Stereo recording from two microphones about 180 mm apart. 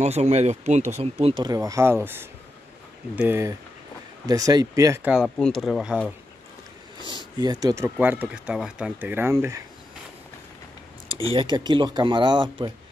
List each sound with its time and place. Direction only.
0.0 s speech: 40° right (ahead or behind); by 5.1 s 15° right (ahead or behind)
5.1 s speech: centre (ahead or behind)
7.3 s speech: 20° right (ahead or behind)
11.1 s speech: 30° right (ahead or behind)